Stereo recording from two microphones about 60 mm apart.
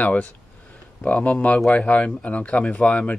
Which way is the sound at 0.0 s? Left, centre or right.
Left.